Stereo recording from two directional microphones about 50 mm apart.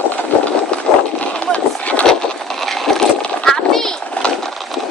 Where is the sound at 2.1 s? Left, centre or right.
Centre.